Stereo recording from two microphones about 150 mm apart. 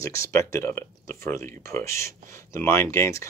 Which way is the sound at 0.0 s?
20° left (ahead or behind).